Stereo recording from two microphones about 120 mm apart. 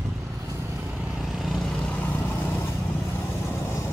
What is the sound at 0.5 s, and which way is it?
Vehicle, 15° right (ahead or behind).